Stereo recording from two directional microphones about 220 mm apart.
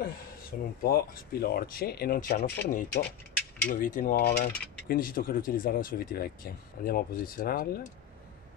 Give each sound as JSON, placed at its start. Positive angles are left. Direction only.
{"t": 0.5, "sound": "mechanisms", "side_deg": 35}
{"t": 0.8, "sound": "speech", "side_deg": 45}
{"t": 3.6, "sound": "mechanisms", "side_deg": 40}